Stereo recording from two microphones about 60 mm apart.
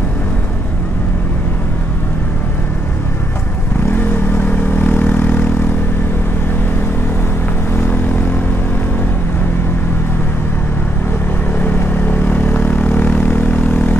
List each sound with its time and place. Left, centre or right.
3.9 s vehicle: left
11.6 s vehicle: left